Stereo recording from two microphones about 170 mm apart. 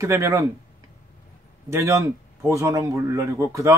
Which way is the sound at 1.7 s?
15° right (ahead or behind).